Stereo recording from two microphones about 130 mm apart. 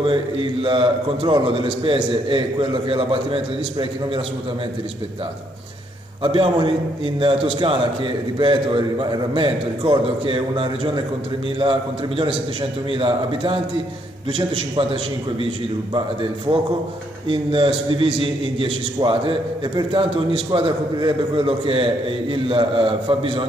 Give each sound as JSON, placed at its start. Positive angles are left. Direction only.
{"t": 0.6, "sound": "a man's voice", "side_deg": -40}
{"t": 6.2, "sound": "a man's voice", "side_deg": -40}